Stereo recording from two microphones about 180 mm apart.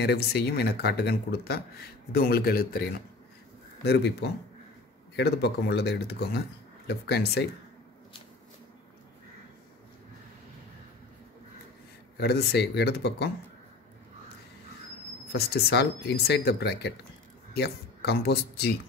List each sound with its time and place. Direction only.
0.0 s speech: 65° left (ahead or behind)
3.8 s speech: 70° left (ahead or behind)
12.2 s speech: 65° left (ahead or behind)
15.3 s speech: 65° left (ahead or behind)